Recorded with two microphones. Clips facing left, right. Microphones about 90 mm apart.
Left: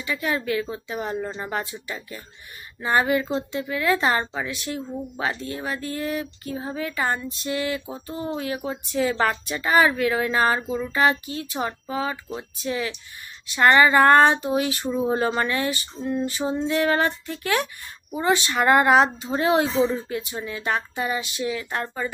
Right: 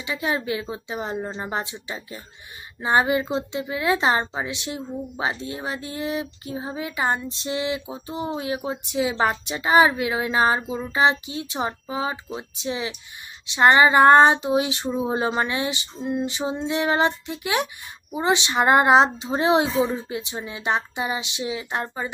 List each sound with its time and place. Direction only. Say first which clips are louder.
0.0 s a woman's voice: even; 20° right (ahead or behind)
15.0 s a sound: left 1 dB; 15° right (ahead or behind)
18.1 s a woman's voice: even; 20° right (ahead or behind)